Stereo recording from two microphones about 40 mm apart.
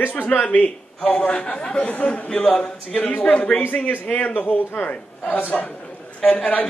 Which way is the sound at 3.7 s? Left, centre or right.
Left.